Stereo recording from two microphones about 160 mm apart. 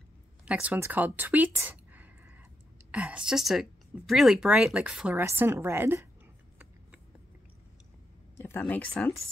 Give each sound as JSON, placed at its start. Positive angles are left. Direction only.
{"t": 0.5, "sound": "speech", "side_deg": -10}
{"t": 8.4, "sound": "speech", "side_deg": 15}